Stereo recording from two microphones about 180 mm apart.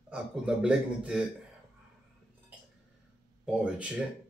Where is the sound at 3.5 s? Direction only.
5° right (ahead or behind).